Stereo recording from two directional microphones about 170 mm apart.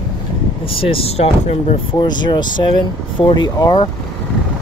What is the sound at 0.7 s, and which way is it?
Speech, 35° left (ahead or behind).